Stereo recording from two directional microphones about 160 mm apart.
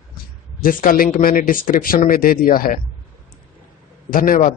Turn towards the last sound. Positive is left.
turn(degrees=60)  # may be behind; listen again after turning